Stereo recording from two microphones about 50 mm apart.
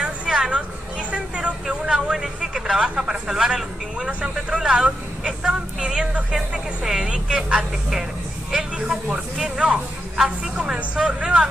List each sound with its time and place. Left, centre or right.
0.0 s vehicle: right
1.9 s speech: centre